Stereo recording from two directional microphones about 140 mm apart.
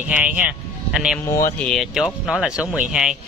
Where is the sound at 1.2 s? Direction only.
25° left (ahead or behind).